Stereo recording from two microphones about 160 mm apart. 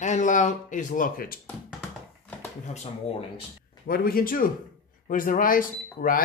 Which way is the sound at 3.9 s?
65° left (ahead or behind).